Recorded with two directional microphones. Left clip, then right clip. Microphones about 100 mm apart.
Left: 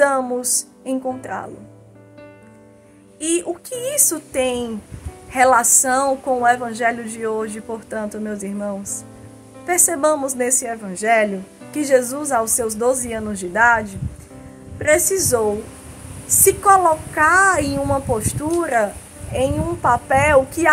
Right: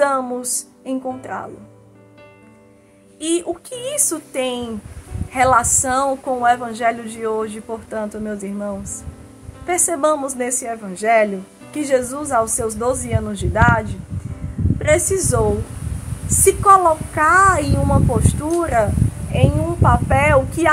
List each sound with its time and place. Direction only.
0.0 s a woman's voice: 25° left (ahead or behind)
3.2 s a woman's voice: 25° left (ahead or behind)